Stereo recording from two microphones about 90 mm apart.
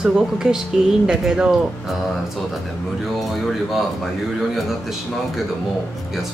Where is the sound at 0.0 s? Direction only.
5° right (ahead or behind).